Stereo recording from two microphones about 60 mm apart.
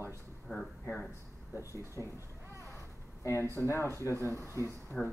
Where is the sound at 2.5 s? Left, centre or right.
Left.